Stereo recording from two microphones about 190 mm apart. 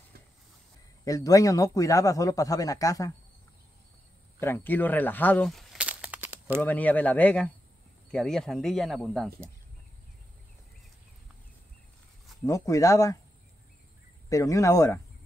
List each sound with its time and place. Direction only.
1.0 s speech: 20° left (ahead or behind)
4.4 s speech: 10° left (ahead or behind); by 6.6 s 10° right (ahead or behind)
6.6 s speech: 10° left (ahead or behind)
12.4 s speech: 15° left (ahead or behind)
14.3 s speech: 15° left (ahead or behind)